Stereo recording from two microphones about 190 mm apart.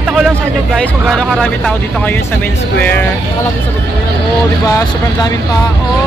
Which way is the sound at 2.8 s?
10° left (ahead or behind).